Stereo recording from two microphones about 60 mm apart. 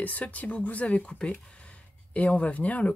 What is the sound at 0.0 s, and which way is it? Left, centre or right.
Speech, left.